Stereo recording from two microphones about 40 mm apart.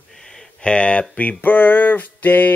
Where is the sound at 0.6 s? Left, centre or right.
Left.